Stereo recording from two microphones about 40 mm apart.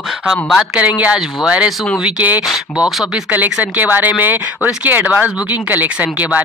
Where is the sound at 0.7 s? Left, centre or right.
Right.